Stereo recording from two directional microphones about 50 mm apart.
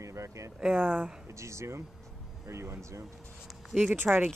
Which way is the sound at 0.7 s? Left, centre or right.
Right.